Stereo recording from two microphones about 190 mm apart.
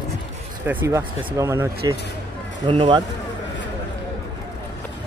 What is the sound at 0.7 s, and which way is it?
Speech, 15° right (ahead or behind).